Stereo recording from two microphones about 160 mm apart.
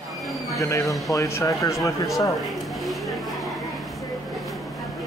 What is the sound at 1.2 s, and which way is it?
Speech, 20° left (ahead or behind).